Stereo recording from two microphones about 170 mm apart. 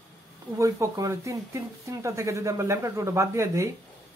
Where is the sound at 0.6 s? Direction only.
20° right (ahead or behind).